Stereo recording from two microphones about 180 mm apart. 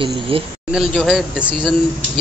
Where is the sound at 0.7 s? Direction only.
Centre (ahead or behind).